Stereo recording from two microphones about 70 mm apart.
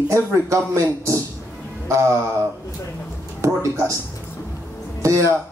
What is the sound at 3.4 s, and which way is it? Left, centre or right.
Speech, right.